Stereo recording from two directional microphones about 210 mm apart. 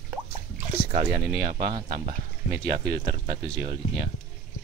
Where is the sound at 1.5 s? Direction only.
20° right (ahead or behind).